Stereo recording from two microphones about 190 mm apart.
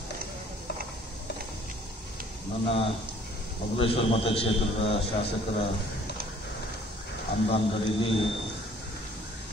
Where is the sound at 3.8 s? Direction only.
30° left (ahead or behind).